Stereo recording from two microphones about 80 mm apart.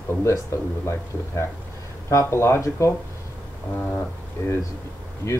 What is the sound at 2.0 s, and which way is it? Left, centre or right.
Speech, left.